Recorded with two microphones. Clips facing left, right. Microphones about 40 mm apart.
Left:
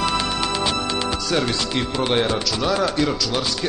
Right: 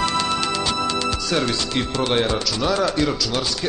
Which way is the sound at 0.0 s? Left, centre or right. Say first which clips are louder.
Right 1 dB; centre.